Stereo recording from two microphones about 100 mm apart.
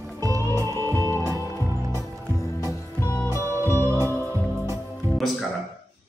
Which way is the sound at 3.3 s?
25° right (ahead or behind).